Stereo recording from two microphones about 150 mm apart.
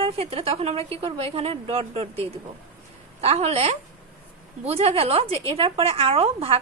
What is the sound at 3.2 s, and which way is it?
A woman's voice, 45° right (ahead or behind).